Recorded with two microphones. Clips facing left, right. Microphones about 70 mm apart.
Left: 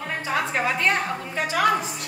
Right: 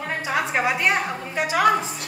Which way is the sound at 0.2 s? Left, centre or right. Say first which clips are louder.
Right 2 dB; centre.